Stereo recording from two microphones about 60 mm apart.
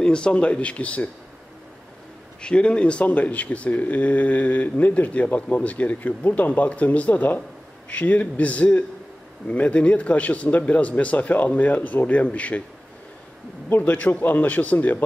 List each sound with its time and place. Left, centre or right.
0.0 s speech: centre
2.4 s speech: centre
13.7 s speech: left